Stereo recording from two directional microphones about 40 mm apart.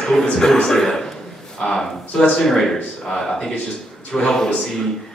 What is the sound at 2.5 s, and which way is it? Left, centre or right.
A man's voice, centre.